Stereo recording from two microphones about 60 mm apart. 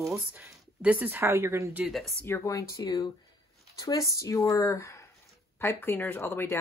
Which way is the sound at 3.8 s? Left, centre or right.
Left.